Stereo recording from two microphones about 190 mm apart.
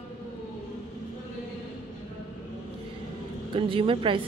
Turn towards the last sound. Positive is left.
turn(degrees=-25)  # may be behind; listen again after turning